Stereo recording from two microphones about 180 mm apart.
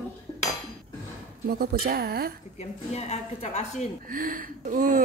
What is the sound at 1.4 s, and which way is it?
Speech, 55° right (ahead or behind).